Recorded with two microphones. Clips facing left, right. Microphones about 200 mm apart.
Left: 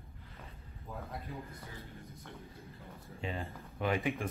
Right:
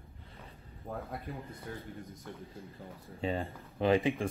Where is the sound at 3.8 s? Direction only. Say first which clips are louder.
Right 6 dB; 30° right (ahead or behind).